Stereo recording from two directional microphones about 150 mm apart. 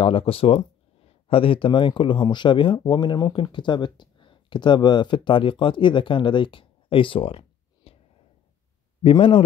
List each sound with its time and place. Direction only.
0.0 s speech: 35° left (ahead or behind)
9.0 s speech: 35° left (ahead or behind)